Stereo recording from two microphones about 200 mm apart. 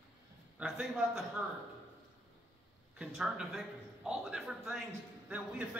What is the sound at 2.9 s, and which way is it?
Speech, 5° right (ahead or behind).